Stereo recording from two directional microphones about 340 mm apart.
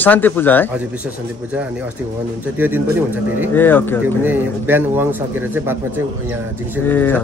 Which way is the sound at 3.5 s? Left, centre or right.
Centre.